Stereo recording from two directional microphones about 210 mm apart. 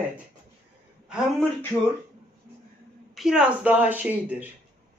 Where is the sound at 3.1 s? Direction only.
5° right (ahead or behind).